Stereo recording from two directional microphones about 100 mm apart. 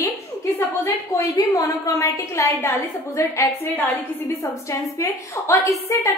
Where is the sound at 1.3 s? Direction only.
35° left (ahead or behind).